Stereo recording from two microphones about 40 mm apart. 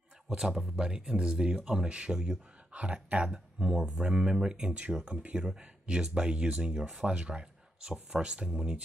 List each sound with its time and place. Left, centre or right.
0.3 s speech: centre
2.7 s speech: right
3.5 s speech: right
5.0 s speech: right